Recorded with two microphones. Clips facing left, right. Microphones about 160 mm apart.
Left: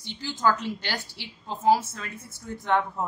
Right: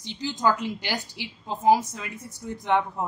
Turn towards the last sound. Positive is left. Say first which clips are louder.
# right 1 dB
turn(degrees=-15)  # may be behind; listen again after turning